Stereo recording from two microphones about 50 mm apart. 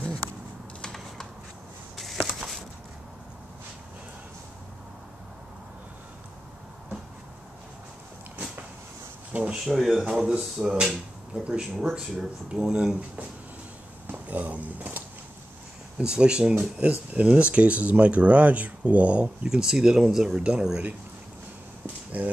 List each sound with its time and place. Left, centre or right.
2.0 s a sound: centre
9.3 s speech: right
9.7 s speech: centre
10.0 s speech: centre
14.0 s a sound: right
16.0 s speech: centre
22.2 s speech: right